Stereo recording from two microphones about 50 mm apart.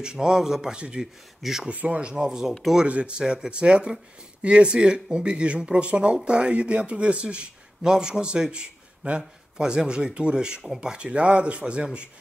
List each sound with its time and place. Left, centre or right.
0.0 s a man's voice: centre
1.4 s speech: centre
1.7 s a man's voice: right